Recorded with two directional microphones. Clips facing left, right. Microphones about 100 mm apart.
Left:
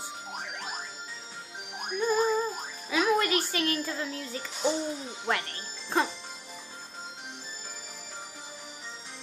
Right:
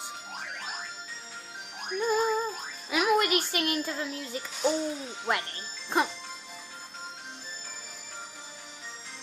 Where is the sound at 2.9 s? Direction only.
20° right (ahead or behind).